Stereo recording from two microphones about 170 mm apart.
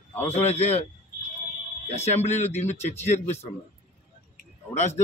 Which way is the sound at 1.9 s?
40° left (ahead or behind).